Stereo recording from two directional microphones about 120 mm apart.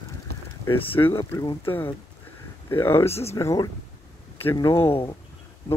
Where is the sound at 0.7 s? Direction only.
50° left (ahead or behind).